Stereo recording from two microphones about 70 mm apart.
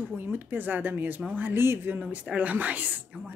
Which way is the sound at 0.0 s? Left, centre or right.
Right.